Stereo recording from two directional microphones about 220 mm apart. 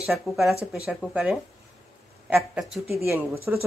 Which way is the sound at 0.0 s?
Centre (ahead or behind).